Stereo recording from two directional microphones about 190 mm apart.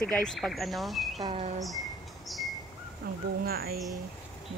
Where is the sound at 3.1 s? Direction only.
50° right (ahead or behind).